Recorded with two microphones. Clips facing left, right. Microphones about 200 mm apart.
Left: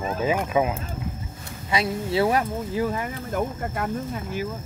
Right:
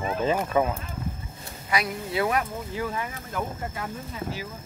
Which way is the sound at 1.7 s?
25° left (ahead or behind).